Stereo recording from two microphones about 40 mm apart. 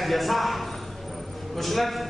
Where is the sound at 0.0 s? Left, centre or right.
Centre.